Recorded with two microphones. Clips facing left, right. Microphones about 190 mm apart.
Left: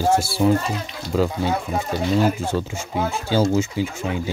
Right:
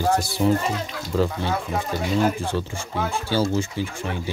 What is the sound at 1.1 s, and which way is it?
Speech, 10° left (ahead or behind).